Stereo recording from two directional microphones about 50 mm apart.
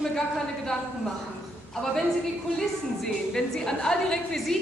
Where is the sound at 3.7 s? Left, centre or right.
Centre.